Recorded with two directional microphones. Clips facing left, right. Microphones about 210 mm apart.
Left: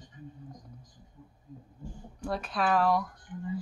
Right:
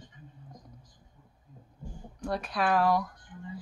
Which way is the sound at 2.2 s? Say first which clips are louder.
Even; centre (ahead or behind).